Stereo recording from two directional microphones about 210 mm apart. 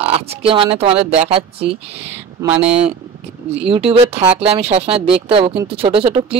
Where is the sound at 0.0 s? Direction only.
30° right (ahead or behind).